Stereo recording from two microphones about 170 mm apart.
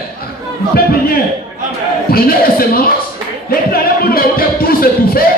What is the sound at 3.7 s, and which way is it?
Music, 60° left (ahead or behind).